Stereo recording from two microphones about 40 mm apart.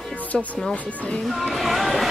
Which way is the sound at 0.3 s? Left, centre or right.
Centre.